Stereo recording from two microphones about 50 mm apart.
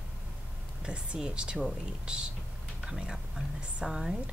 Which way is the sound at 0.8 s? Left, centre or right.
Centre.